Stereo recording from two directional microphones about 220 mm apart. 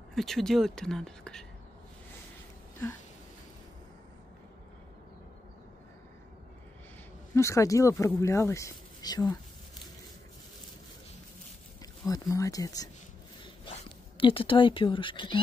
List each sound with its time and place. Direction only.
0.1 s speech: centre (ahead or behind)
7.3 s speech: 15° left (ahead or behind)
11.8 s speech: 15° left (ahead or behind)
13.4 s a sound: 25° left (ahead or behind)